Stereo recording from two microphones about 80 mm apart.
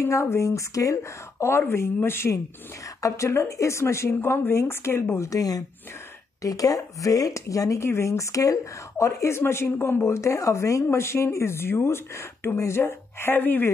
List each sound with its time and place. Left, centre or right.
0.0 s speech: left
1.4 s speech: left
6.4 s speech: left